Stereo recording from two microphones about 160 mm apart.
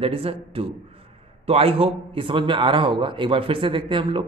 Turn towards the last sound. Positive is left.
turn(degrees=-30)  # may be behind; listen again after turning